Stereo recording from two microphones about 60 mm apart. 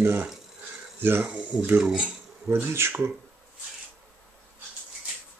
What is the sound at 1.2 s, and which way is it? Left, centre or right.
Speech, right.